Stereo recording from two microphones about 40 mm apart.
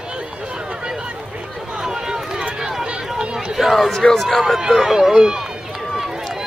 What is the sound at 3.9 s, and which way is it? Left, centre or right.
Speech, centre.